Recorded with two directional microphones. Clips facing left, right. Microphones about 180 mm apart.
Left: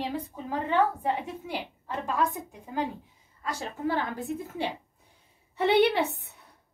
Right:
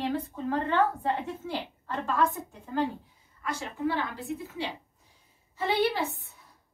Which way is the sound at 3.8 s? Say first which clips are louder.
Left 1 dB; 45° left (ahead or behind).